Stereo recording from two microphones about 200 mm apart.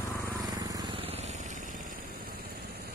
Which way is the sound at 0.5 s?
20° right (ahead or behind).